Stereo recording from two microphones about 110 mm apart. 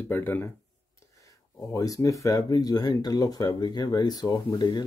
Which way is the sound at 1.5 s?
30° left (ahead or behind).